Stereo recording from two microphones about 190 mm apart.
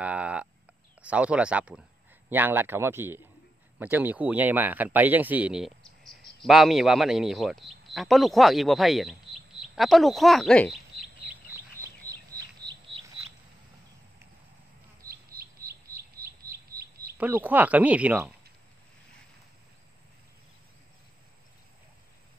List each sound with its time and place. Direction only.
0.0 s a sound: 5° right (ahead or behind)
1.0 s a man's voice: 5° right (ahead or behind)
11.2 s bird: 10° right (ahead or behind)
12.3 s a sound: 20° right (ahead or behind)
15.0 s bird: 50° right (ahead or behind)
17.2 s speech: 10° right (ahead or behind)